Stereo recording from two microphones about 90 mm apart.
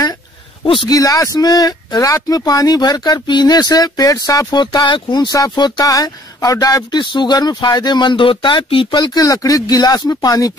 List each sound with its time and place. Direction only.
0.8 s speech: 40° left (ahead or behind)
4.6 s speech: 60° left (ahead or behind)
8.9 s speech: 50° left (ahead or behind)